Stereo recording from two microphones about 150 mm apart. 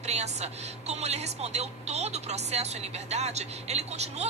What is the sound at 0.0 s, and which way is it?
Speech, 45° right (ahead or behind).